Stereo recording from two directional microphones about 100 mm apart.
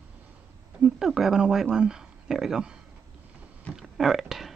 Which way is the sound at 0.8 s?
5° right (ahead or behind).